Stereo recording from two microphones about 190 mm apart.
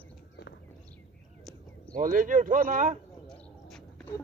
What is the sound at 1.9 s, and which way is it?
Speech, 45° right (ahead or behind).